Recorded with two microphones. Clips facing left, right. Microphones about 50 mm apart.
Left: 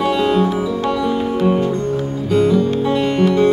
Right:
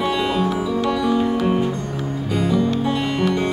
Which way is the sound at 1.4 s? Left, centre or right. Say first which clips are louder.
Left 3 dB; centre.